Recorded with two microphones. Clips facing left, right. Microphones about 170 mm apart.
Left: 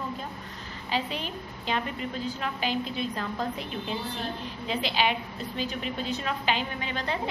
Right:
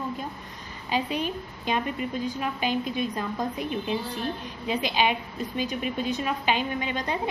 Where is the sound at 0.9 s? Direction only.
15° right (ahead or behind).